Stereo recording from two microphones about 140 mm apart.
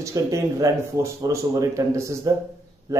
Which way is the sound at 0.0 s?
25° right (ahead or behind).